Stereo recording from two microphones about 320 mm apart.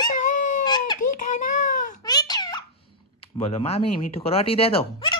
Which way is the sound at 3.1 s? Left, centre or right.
Centre.